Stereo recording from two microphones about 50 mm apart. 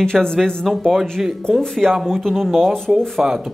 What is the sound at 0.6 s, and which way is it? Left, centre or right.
Speech, centre.